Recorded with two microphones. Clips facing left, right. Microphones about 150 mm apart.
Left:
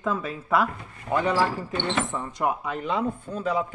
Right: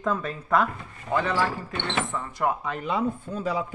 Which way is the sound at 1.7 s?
20° left (ahead or behind).